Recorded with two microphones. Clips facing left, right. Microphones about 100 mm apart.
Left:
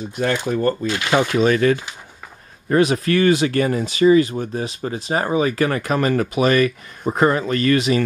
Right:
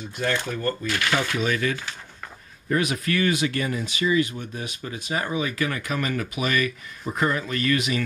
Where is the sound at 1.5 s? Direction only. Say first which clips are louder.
Left 9 dB; 45° left (ahead or behind).